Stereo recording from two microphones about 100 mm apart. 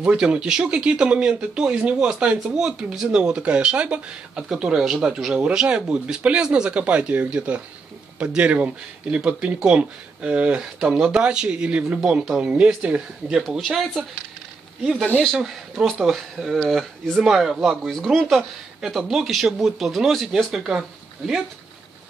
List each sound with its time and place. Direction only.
0.0 s speech: 10° right (ahead or behind)
15.2 s speech: centre (ahead or behind)